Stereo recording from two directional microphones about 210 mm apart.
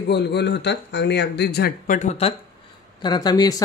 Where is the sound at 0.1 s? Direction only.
50° left (ahead or behind); by 2.3 s 30° left (ahead or behind).